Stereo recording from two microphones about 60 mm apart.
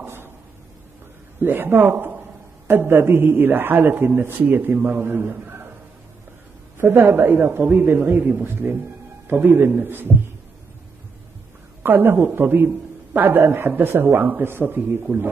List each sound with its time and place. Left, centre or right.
0.0 s a sound: right
1.4 s a man's voice: right
5.0 s a man's voice: right
6.8 s a man's voice: right
8.2 s speech: right
9.3 s a man's voice: right
11.8 s a man's voice: right